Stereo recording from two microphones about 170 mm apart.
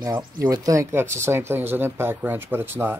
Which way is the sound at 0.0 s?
20° right (ahead or behind).